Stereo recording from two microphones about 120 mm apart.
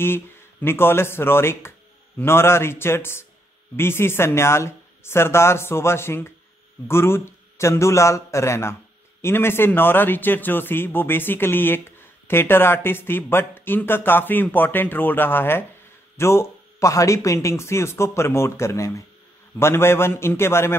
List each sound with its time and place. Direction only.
0.0 s speech: 20° left (ahead or behind)